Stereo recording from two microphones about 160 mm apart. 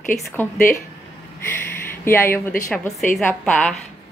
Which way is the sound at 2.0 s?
15° left (ahead or behind).